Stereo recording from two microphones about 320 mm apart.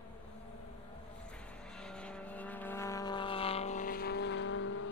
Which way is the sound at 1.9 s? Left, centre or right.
Centre.